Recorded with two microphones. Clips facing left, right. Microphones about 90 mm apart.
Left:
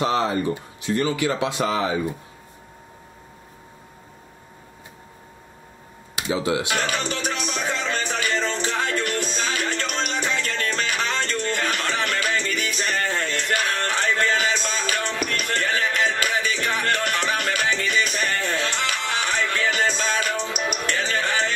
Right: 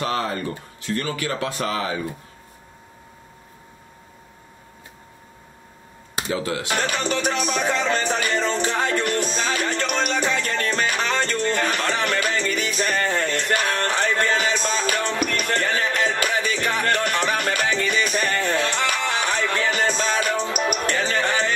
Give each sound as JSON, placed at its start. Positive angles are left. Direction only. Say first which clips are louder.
{"t": 0.0, "sound": "speech", "louder": "left 3 dB", "side_deg": 20}
{"t": 6.2, "sound": "speech", "louder": "left 3 dB", "side_deg": 15}
{"t": 6.6, "sound": "music", "louder": "right 1 dB", "side_deg": -35}